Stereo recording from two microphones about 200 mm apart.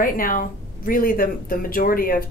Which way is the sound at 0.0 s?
45° left (ahead or behind).